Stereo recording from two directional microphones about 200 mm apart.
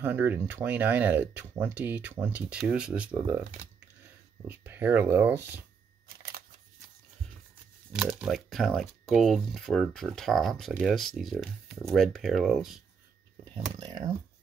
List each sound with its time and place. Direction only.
0.0 s speech: 10° right (ahead or behind)
4.5 s speech: 10° right (ahead or behind)
7.9 s speech: 5° right (ahead or behind)
13.7 s speech: 20° right (ahead or behind)